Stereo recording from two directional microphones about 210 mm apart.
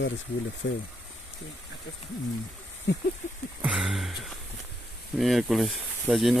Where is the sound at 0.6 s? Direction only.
70° left (ahead or behind).